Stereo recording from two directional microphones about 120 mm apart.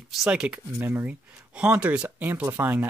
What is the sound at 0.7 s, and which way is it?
A child's voice, 20° right (ahead or behind).